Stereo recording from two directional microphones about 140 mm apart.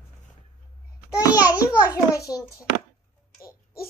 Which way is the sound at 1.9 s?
25° left (ahead or behind).